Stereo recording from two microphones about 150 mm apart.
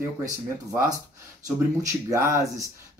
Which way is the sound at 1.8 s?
20° right (ahead or behind).